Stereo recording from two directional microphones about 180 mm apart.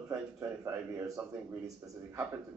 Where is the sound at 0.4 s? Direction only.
15° right (ahead or behind).